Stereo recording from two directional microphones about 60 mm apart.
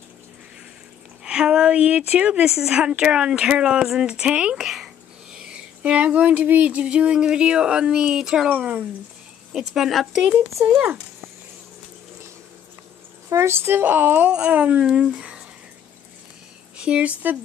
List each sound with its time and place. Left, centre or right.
1.2 s a woman's voice: centre
4.6 s speech: centre
8.5 s speech: right
9.5 s speech: centre
10.6 s speech: right
13.3 s speech: right
14.3 s a woman's voice: right
16.7 s speech: centre